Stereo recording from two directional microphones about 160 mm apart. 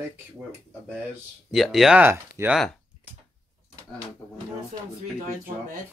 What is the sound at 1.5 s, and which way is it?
Speech, centre (ahead or behind).